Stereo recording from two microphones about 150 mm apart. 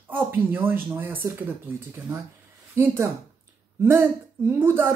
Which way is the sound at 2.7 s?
15° right (ahead or behind).